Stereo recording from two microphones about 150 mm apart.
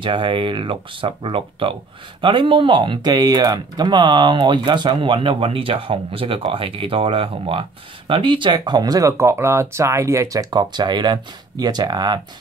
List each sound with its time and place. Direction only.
0.0 s speech: 35° right (ahead or behind)